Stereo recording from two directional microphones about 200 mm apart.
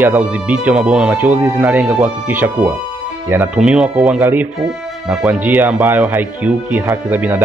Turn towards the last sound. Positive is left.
turn(degrees=-10)  # may be behind; listen again after turning